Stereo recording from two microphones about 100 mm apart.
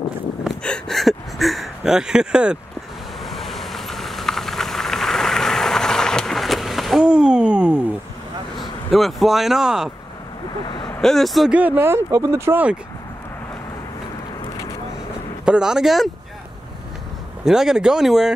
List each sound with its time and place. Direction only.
0.7 s a sound: 5° left (ahead or behind)
3.3 s vehicle: centre (ahead or behind)
8.5 s speech: centre (ahead or behind)
10.6 s speech: 50° left (ahead or behind)
11.0 s speech: 5° left (ahead or behind)
11.5 s speech: 20° right (ahead or behind)
15.4 s speech: 10° right (ahead or behind)
17.5 s speech: 5° right (ahead or behind)